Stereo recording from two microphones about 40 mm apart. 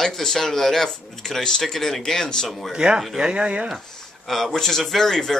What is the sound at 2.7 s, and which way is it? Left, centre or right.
Speech, right.